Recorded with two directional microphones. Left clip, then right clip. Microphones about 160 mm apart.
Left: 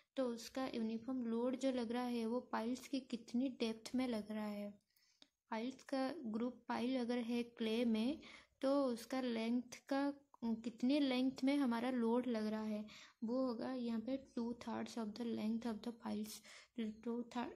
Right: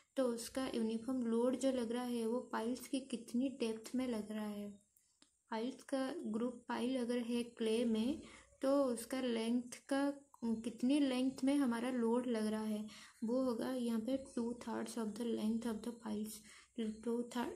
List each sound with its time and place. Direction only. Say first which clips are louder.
0.1 s speech: right 4 dB; 10° left (ahead or behind)